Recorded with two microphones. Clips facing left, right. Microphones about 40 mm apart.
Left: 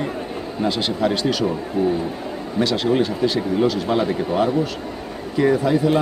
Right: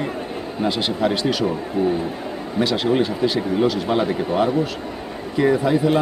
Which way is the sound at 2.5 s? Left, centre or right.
Centre.